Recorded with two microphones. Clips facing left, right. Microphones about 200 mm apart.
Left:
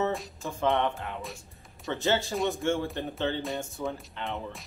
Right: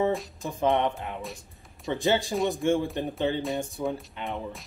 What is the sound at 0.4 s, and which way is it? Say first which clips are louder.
Speech: right 1 dB; 15° right (ahead or behind).